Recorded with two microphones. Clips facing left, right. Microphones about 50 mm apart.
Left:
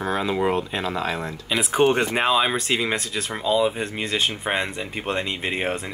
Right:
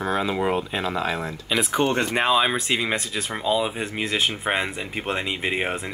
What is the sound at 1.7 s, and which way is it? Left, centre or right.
Speech, centre.